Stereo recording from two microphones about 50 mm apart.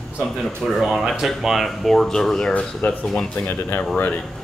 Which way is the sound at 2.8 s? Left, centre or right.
Left.